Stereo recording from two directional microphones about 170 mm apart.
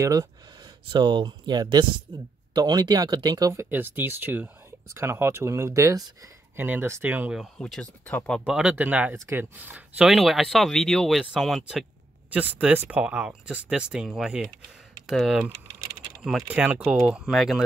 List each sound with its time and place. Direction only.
0.0 s speech: 20° right (ahead or behind); by 17.6 s centre (ahead or behind)